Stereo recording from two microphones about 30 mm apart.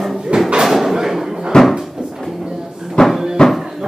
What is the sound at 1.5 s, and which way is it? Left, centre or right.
Cupboard open or close, left.